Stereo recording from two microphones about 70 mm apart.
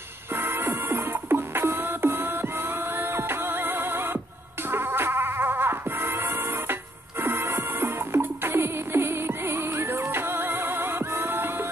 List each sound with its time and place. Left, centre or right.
0.3 s music: right